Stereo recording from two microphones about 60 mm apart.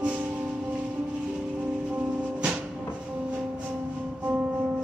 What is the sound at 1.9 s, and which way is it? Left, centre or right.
Music, right.